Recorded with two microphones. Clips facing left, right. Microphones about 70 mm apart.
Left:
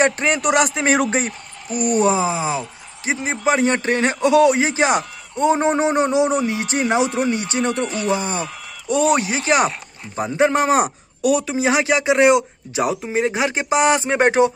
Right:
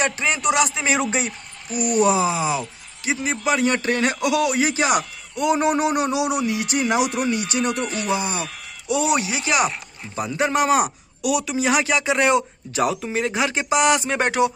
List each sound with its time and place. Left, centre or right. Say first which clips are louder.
0.0 s a woman's voice: left 4 dB; left